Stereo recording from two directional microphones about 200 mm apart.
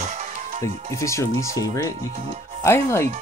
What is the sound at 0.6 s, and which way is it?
Speech, 15° left (ahead or behind).